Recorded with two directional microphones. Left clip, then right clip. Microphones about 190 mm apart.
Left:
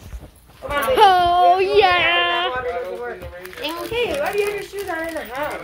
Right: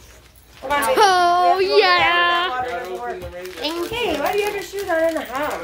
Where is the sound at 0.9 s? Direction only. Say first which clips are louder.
Left 2 dB; 10° right (ahead or behind).